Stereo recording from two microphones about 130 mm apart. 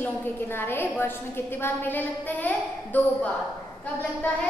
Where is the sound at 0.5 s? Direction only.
15° left (ahead or behind).